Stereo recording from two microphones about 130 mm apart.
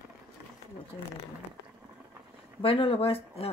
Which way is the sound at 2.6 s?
45° left (ahead or behind).